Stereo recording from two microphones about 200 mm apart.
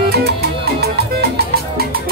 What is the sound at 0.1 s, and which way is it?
Music, 55° right (ahead or behind).